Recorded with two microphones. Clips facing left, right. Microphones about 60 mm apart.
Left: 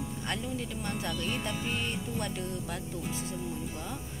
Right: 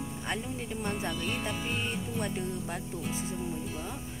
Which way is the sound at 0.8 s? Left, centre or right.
Right.